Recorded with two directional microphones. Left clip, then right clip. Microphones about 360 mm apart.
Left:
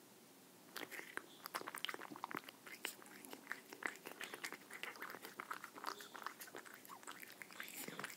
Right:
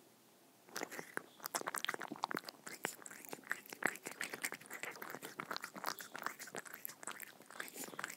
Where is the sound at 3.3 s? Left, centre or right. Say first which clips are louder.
Right 6 dB; right.